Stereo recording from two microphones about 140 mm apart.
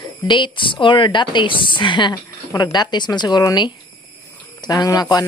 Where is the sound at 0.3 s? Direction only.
35° left (ahead or behind).